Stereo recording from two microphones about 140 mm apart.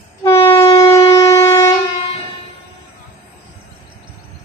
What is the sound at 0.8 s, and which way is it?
Shofar, 25° left (ahead or behind).